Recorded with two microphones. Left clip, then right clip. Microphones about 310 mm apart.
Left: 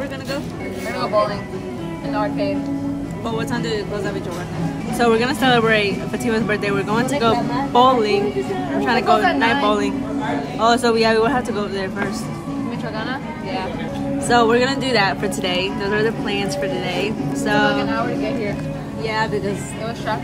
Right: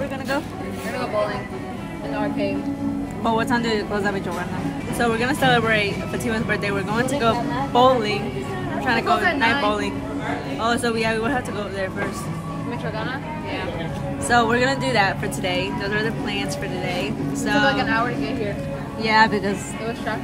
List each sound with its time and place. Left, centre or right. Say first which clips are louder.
2.1 s music: left 3 dB; centre
3.3 s speech: right 3 dB; right
4.9 s speech: left 5 dB; centre
14.3 s speech: left 3 dB; centre
19.0 s speech: right 4 dB; right